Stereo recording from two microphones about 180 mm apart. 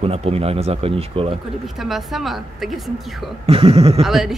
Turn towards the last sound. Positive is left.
turn(degrees=0)  # may be behind; listen again after turning